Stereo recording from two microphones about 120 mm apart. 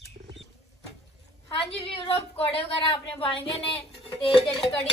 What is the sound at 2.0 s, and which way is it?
Speech, 55° left (ahead or behind).